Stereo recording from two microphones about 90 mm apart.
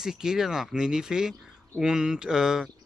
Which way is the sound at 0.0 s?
5° right (ahead or behind).